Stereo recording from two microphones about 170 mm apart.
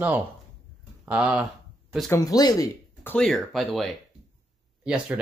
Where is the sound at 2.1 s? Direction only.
20° left (ahead or behind).